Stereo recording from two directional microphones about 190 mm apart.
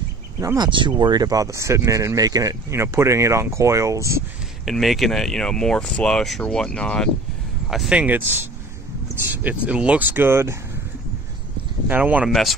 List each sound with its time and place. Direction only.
0.4 s speech: 20° right (ahead or behind)
4.6 s speech: centre (ahead or behind)
11.9 s speech: 10° right (ahead or behind)